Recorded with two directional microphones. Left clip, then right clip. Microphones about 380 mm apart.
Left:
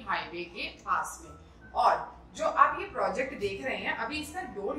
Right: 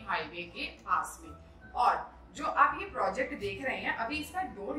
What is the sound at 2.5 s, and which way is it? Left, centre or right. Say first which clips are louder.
A woman's voice: left 2 dB; centre.